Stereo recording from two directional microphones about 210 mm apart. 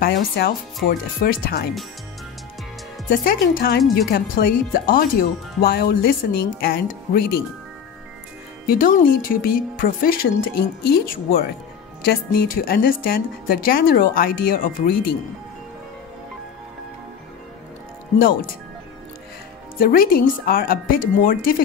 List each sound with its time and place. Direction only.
0.0 s speech: 45° left (ahead or behind)
3.1 s speech: 45° left (ahead or behind)
8.6 s speech: 40° left (ahead or behind)
19.8 s speech: 45° left (ahead or behind)